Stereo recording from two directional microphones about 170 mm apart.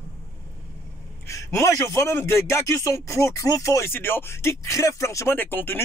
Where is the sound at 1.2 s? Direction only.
15° left (ahead or behind).